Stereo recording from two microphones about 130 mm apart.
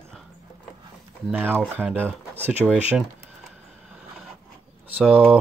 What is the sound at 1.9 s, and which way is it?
Speech, 15° right (ahead or behind).